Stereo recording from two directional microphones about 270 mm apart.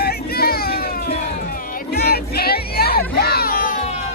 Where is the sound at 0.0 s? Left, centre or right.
Left.